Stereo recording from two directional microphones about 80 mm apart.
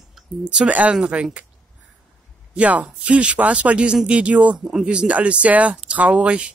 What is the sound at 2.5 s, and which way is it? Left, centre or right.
Speech, centre.